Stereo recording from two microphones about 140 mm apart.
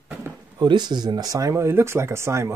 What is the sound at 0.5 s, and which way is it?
Speech, 30° right (ahead or behind).